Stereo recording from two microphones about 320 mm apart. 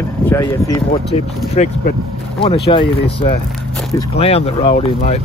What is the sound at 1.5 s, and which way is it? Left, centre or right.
Speech, left.